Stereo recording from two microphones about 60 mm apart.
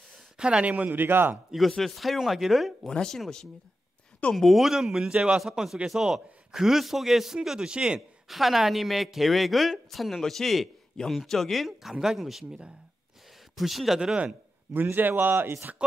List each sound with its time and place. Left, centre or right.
0.4 s speech: centre; by 1.4 s right
1.8 s speech: centre
2.9 s speech: centre
4.3 s a man's voice: centre
8.3 s speech: centre
13.6 s a man's voice: centre
14.7 s a man's voice: right
15.4 s speech: right